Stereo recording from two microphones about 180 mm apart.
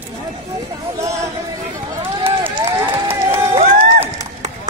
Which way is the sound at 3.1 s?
10° right (ahead or behind).